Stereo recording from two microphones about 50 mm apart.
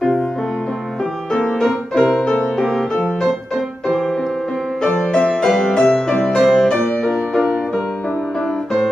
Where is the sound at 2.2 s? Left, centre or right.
Left.